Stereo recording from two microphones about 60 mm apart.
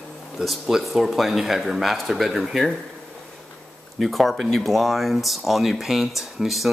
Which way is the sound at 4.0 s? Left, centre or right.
Centre.